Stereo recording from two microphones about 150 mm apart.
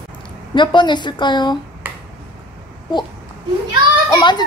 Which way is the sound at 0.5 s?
30° left (ahead or behind).